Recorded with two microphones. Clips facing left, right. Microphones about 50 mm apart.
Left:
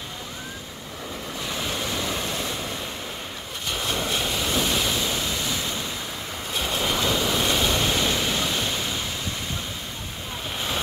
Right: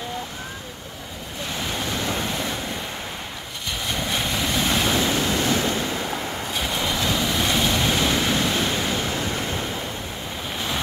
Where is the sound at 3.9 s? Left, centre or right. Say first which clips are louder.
Right 3 dB; centre.